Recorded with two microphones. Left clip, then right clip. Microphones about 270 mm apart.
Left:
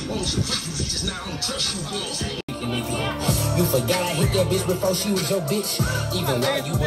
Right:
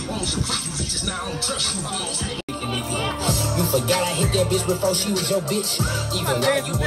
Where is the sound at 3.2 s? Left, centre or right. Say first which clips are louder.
Even; right.